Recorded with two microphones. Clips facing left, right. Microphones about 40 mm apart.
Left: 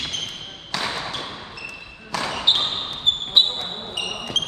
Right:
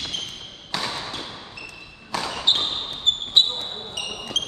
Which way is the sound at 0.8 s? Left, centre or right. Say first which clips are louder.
Left 5 dB; left.